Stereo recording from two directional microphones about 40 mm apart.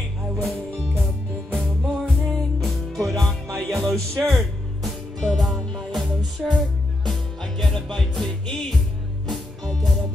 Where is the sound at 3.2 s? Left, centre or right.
Centre.